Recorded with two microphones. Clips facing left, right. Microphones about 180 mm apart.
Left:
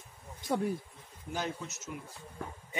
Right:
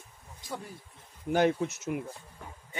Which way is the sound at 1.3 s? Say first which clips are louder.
Right 11 dB; 65° right (ahead or behind).